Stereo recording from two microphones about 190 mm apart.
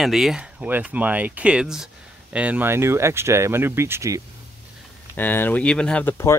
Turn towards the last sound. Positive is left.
turn(degrees=10)  # may be behind; listen again after turning